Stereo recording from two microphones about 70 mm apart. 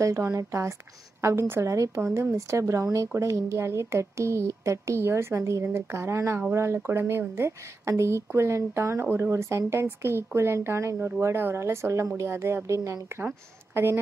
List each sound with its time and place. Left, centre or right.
0.0 s speech: right
13.7 s speech: right